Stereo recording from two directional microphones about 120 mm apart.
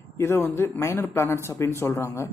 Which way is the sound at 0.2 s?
20° left (ahead or behind).